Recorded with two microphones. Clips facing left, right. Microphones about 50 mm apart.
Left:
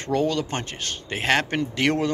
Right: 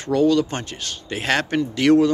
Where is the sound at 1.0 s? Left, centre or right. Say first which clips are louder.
Right 1 dB; centre.